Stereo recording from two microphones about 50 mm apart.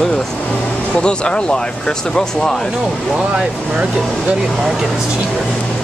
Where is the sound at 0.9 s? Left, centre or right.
Centre.